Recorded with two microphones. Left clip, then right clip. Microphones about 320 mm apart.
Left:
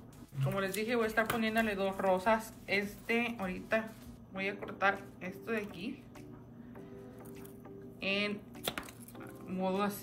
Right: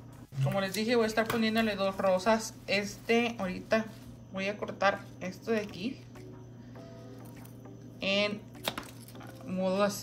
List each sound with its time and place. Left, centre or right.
0.4 s a woman's voice: centre
8.0 s a sound: centre
9.5 s a woman's voice: centre